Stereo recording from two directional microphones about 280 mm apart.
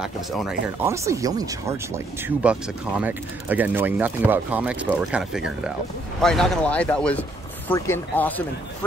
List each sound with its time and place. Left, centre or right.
0.0 s speech: centre